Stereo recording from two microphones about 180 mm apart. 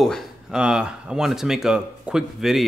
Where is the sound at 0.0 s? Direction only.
Centre (ahead or behind).